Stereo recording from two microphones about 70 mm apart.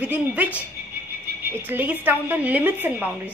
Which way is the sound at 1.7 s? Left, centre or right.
Right.